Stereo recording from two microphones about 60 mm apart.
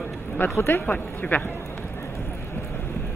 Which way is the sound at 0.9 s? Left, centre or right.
Left.